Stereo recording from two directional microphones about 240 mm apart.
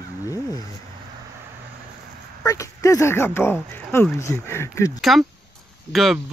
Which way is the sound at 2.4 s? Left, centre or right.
Centre.